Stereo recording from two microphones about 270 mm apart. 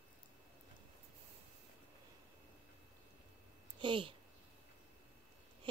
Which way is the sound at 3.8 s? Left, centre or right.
Centre.